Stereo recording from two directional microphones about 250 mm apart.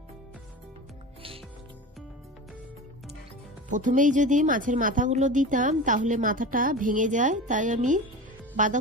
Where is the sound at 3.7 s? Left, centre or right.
Right.